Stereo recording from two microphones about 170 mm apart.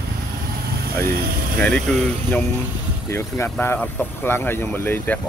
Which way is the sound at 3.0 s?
15° left (ahead or behind).